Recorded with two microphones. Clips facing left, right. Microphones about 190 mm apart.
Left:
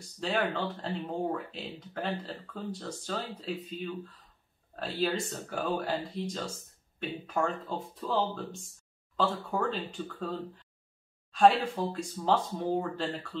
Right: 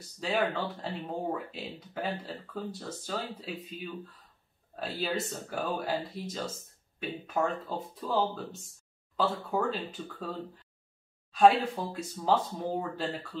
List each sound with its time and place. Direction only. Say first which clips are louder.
0.2 s speech: even; centre (ahead or behind)
4.7 s speech: left 2 dB; centre (ahead or behind)